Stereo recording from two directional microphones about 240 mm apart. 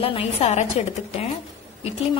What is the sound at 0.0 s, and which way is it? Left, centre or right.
A woman's voice, left.